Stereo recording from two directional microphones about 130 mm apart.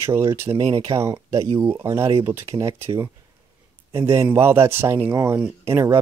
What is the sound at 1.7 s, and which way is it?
Speech, 35° right (ahead or behind).